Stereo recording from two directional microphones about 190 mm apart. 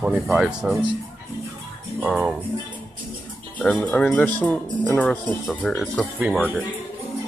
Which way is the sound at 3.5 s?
5° left (ahead or behind).